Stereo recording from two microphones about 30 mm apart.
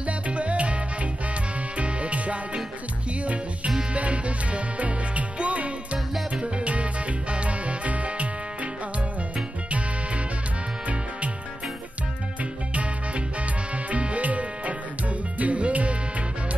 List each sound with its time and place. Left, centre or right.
0.0 s music: right
1.8 s music: right
3.9 s music: right
6.4 s music: right
9.7 s music: right
13.8 s music: right